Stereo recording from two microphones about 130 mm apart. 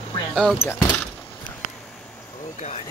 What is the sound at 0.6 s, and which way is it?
Speech, 20° left (ahead or behind).